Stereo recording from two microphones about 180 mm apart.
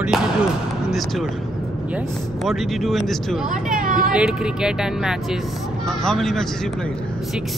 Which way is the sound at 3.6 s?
50° right (ahead or behind).